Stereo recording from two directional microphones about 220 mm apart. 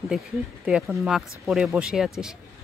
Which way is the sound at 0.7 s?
Centre (ahead or behind).